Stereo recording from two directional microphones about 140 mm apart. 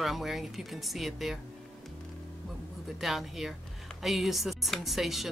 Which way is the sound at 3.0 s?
Centre (ahead or behind).